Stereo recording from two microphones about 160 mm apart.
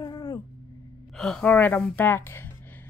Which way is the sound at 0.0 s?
25° left (ahead or behind).